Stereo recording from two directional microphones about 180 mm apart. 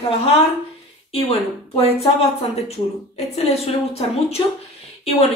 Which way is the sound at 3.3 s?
35° left (ahead or behind).